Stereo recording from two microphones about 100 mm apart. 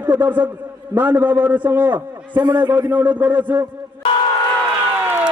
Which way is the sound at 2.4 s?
45° right (ahead or behind).